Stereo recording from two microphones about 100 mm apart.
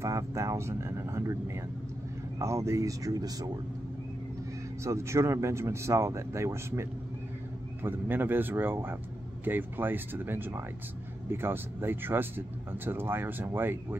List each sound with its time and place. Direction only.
0.0 s speech: 30° right (ahead or behind)
4.8 s speech: 30° right (ahead or behind)